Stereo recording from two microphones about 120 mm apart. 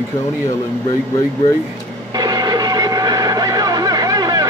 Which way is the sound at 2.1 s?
35° right (ahead or behind).